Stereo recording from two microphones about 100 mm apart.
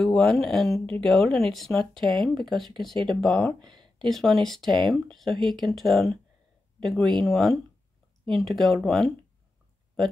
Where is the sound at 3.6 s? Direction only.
50° right (ahead or behind).